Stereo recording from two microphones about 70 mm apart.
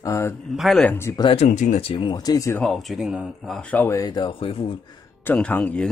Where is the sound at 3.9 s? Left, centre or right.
Left.